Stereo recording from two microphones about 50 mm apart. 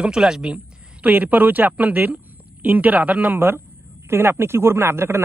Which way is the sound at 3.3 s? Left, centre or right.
Right.